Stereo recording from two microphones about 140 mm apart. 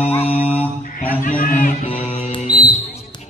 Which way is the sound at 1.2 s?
75° left (ahead or behind).